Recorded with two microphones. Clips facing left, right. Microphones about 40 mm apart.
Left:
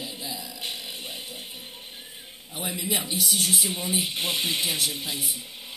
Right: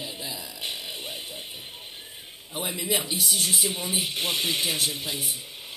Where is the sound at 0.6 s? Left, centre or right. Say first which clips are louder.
Right 2 dB; centre.